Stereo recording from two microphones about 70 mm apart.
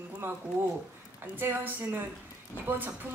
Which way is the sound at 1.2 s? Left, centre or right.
Right.